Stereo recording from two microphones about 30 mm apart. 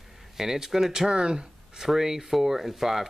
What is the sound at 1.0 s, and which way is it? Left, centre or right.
Speech, right.